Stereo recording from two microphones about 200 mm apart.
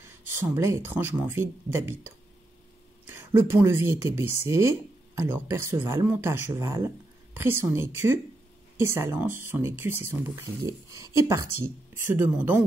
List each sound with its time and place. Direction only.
0.4 s speech: 15° right (ahead or behind)